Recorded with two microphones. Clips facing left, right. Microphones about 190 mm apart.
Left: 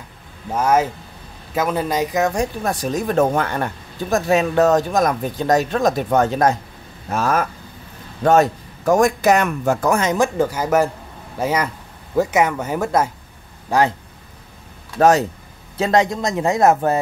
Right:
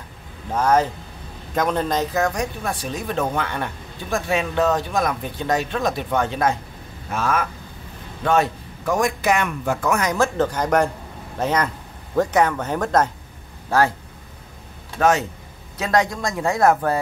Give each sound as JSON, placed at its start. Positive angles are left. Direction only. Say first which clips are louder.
{"t": 0.5, "sound": "speech", "louder": "left 1 dB", "side_deg": 10}
{"t": 2.3, "sound": "speech", "louder": "left 4 dB", "side_deg": 40}
{"t": 10.1, "sound": "speech", "louder": "left 2 dB", "side_deg": 15}
{"t": 15.0, "sound": "speech", "louder": "left 4 dB", "side_deg": 35}
{"t": 15.8, "sound": "speech", "louder": "left 3 dB", "side_deg": 25}